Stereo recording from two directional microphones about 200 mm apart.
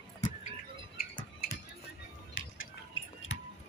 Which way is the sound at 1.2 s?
45° left (ahead or behind).